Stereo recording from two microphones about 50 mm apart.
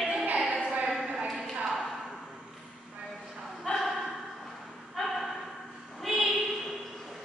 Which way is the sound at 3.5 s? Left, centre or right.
Centre.